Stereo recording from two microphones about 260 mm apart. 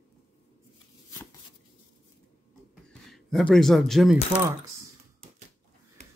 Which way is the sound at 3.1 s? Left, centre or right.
Centre.